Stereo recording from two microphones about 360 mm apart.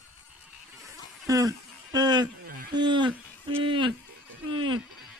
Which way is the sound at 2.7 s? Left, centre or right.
Centre.